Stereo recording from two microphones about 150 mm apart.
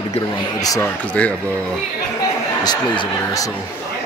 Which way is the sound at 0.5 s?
25° left (ahead or behind).